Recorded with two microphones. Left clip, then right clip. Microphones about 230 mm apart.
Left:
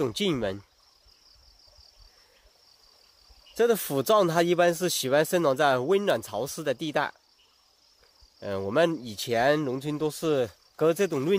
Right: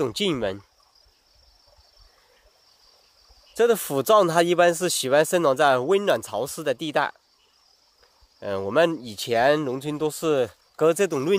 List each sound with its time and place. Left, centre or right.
0.0 s speech: right
3.5 s speech: right
8.4 s speech: right